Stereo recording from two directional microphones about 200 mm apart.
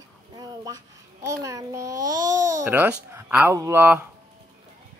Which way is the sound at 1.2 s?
15° right (ahead or behind).